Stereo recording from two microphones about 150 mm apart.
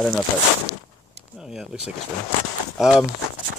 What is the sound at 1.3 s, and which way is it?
Speech, 5° right (ahead or behind).